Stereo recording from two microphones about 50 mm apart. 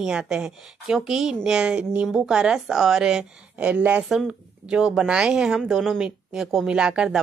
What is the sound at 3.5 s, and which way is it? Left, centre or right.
Speech, right.